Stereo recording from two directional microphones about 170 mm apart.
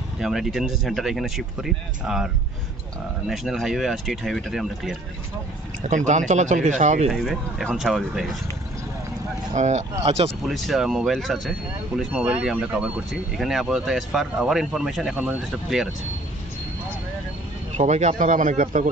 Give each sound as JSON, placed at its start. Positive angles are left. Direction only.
{"t": 0.2, "sound": "speech", "side_deg": 0}
{"t": 5.9, "sound": "speech", "side_deg": -45}
{"t": 7.1, "sound": "speech", "side_deg": 0}
{"t": 9.5, "sound": "speech", "side_deg": -45}
{"t": 10.4, "sound": "speech", "side_deg": 0}
{"t": 17.7, "sound": "speech", "side_deg": -45}